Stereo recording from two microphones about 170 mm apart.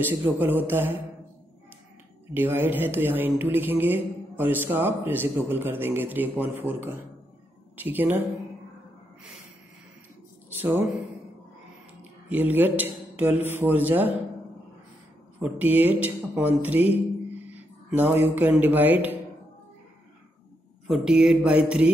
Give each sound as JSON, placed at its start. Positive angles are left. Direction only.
{"t": 0.0, "sound": "speech", "side_deg": -10}
{"t": 2.3, "sound": "speech", "side_deg": -10}
{"t": 12.3, "sound": "speech", "side_deg": -10}
{"t": 15.3, "sound": "speech", "side_deg": -10}
{"t": 20.8, "sound": "mantra", "side_deg": -5}